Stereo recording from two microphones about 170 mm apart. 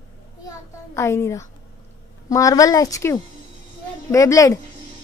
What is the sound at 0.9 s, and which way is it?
A woman's voice, 15° left (ahead or behind).